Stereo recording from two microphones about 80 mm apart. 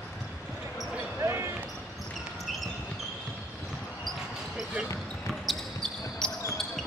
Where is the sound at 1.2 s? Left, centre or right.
Right.